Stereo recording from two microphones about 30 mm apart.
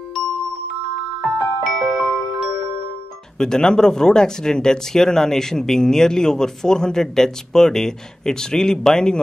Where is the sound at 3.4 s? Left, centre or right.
Left.